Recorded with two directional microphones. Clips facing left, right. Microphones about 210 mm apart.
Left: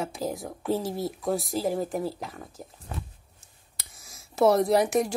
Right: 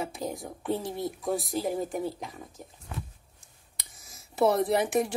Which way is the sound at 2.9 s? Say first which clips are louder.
Left 1 dB; 35° left (ahead or behind).